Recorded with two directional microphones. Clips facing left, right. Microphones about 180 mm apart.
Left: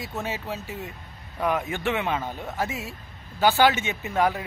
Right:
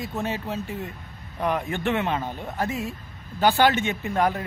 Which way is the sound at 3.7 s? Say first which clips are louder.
Right 4 dB; 50° right (ahead or behind).